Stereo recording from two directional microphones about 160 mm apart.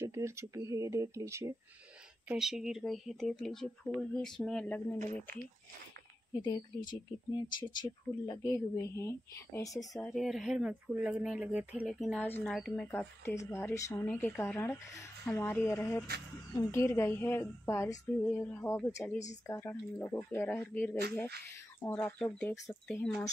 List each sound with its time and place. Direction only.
0.0 s speech: 15° right (ahead or behind)
2.2 s speech: centre (ahead or behind)
4.9 s speech: 55° right (ahead or behind)
7.4 s speech: 25° left (ahead or behind)
9.8 s speech: centre (ahead or behind)
12.8 s a woman's voice: 15° left (ahead or behind)